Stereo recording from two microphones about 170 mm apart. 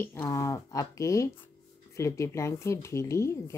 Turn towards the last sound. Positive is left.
turn(degrees=15)  # may be behind; listen again after turning